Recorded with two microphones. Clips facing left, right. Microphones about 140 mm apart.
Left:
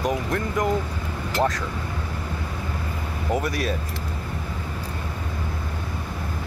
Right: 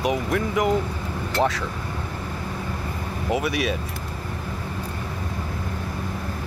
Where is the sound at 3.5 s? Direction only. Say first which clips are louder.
Right 2 dB; 70° right (ahead or behind).